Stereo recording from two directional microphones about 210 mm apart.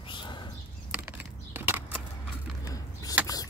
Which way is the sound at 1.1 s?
10° right (ahead or behind).